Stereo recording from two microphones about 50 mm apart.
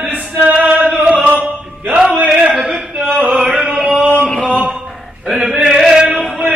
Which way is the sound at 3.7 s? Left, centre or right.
Centre.